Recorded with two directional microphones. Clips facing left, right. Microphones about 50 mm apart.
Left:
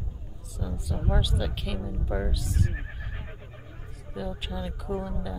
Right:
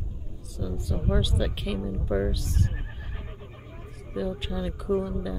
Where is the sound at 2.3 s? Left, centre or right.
Centre.